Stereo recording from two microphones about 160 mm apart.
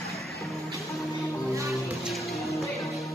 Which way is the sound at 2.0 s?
Centre (ahead or behind).